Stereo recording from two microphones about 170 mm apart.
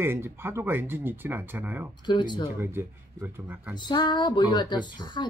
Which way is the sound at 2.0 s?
25° left (ahead or behind).